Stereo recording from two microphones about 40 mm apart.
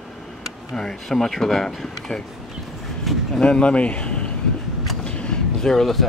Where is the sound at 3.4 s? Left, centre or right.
Left.